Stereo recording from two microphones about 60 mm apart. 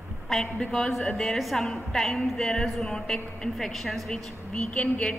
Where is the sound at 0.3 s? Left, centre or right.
Centre.